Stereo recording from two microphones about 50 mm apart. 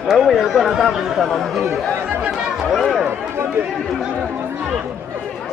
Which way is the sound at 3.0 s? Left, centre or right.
Right.